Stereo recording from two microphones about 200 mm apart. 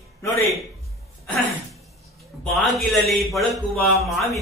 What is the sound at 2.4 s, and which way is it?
A man's voice, centre (ahead or behind).